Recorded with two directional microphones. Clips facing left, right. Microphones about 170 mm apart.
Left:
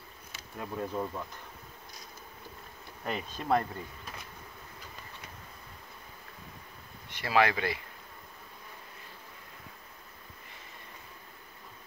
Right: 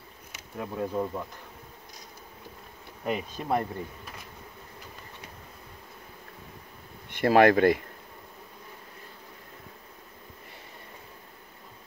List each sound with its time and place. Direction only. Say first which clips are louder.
0.3 s speech: right 3 dB; 15° right (ahead or behind)
3.1 s speech: right 1 dB; 10° right (ahead or behind)
7.1 s speech: right 8 dB; 50° right (ahead or behind)